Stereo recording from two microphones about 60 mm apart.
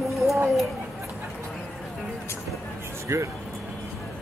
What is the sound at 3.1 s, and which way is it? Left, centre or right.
Speech, right.